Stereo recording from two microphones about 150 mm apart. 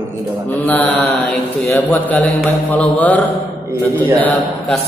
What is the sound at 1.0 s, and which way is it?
A man's voice, centre (ahead or behind).